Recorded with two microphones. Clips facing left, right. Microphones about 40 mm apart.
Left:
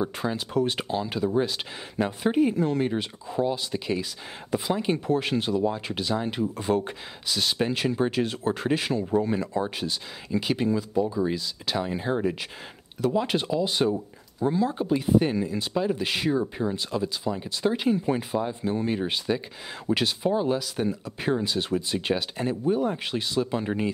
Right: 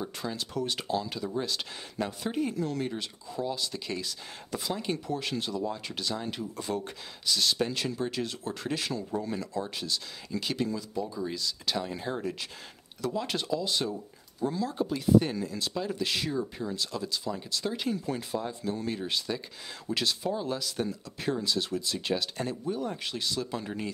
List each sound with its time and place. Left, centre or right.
0.0 s speech: left